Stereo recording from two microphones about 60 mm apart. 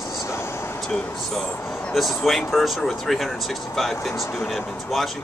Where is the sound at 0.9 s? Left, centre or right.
Centre.